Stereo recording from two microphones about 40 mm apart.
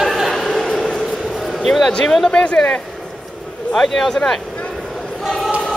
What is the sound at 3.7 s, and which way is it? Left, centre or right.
Speech, centre.